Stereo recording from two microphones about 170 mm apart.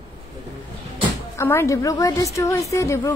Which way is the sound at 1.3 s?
15° left (ahead or behind).